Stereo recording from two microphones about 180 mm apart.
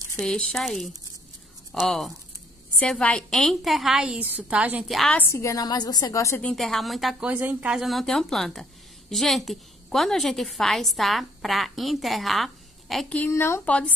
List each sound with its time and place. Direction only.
0.2 s a woman's voice: 5° left (ahead or behind)
5.3 s a woman's voice: 15° left (ahead or behind)
6.5 s a woman's voice: centre (ahead or behind)